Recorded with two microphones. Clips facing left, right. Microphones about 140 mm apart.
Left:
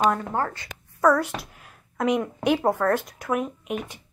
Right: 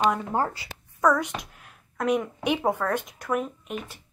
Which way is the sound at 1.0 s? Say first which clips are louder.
Left 2 dB; 5° left (ahead or behind).